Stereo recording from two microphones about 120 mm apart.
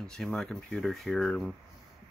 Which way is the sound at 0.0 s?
5° left (ahead or behind).